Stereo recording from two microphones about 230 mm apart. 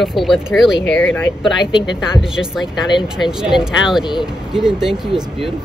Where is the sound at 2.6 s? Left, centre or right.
Centre.